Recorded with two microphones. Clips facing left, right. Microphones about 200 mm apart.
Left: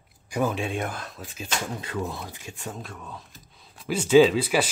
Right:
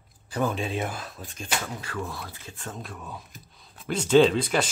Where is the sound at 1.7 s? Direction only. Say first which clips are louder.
Left 3 dB; 20° left (ahead or behind).